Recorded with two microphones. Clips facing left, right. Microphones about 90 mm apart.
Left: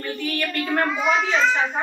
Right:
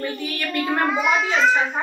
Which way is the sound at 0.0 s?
15° right (ahead or behind).